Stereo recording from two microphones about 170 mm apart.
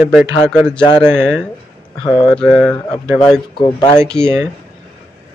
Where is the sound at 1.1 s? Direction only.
5° left (ahead or behind).